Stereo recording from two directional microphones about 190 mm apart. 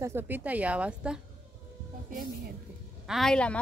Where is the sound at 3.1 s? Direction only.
Centre (ahead or behind).